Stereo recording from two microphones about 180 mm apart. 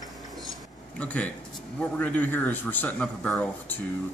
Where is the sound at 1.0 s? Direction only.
10° left (ahead or behind).